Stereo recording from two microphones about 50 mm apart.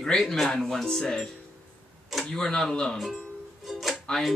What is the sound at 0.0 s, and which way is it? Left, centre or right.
Speech, centre.